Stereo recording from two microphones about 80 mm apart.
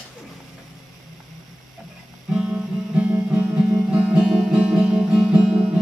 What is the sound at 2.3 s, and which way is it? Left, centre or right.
Music, centre.